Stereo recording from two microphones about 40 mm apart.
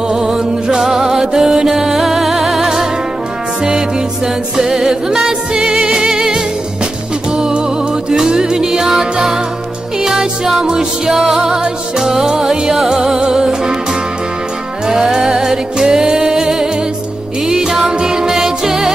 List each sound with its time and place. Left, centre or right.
0.1 s music: centre
4.6 s music: centre
14.9 s music: centre